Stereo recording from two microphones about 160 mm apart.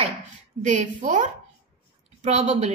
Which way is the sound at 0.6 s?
50° right (ahead or behind).